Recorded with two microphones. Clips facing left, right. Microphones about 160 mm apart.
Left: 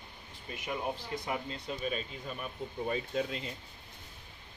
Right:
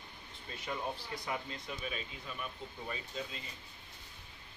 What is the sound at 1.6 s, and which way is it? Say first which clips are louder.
Speech: left 6 dB; 35° left (ahead or behind).